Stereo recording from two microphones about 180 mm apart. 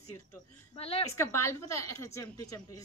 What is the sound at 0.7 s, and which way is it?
Speech, 35° left (ahead or behind).